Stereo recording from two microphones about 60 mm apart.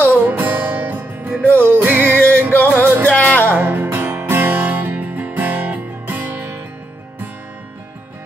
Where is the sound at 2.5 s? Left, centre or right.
Left.